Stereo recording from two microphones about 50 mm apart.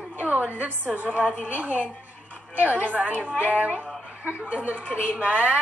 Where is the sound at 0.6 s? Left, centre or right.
Right.